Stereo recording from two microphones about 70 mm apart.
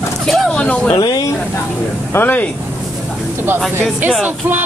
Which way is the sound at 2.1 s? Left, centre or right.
Left.